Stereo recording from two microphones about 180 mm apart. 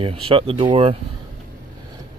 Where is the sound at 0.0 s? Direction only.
30° right (ahead or behind).